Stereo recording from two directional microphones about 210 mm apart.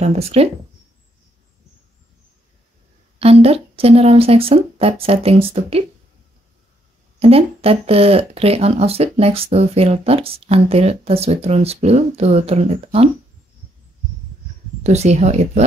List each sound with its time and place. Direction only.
0.0 s speech: 30° right (ahead or behind)
3.2 s speech: 30° right (ahead or behind)
7.2 s speech: 25° right (ahead or behind)
14.8 s speech: 30° right (ahead or behind)